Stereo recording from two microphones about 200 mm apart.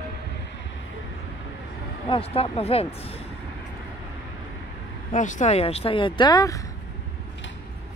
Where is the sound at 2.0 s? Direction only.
30° left (ahead or behind).